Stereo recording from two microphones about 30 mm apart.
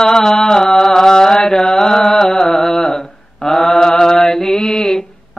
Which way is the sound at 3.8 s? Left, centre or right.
Left.